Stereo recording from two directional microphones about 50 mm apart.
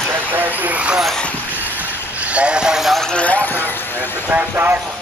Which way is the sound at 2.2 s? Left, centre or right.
Right.